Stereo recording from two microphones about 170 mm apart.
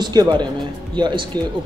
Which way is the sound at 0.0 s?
25° right (ahead or behind).